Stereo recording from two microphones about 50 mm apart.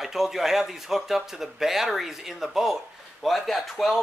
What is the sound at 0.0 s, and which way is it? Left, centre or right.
Speech, centre.